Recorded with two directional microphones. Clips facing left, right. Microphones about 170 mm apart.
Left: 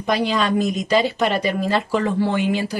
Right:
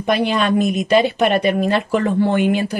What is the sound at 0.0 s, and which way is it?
A woman's voice, 60° right (ahead or behind).